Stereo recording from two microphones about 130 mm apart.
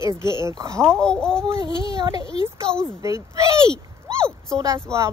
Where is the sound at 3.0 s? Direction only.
25° right (ahead or behind).